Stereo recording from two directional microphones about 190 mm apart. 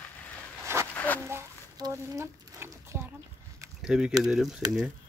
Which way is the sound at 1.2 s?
15° right (ahead or behind).